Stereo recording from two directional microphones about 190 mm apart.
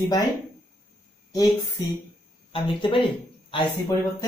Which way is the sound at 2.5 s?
25° left (ahead or behind).